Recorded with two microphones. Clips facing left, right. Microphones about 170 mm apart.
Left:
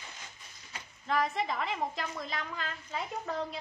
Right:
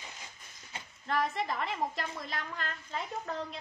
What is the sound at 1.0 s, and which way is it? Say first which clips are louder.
A woman's voice: left 1 dB; centre (ahead or behind).